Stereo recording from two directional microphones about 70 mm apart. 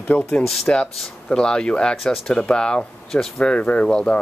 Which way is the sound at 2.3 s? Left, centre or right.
Centre.